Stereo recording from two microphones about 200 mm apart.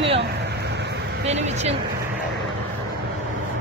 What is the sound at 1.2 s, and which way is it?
Speech, 35° right (ahead or behind).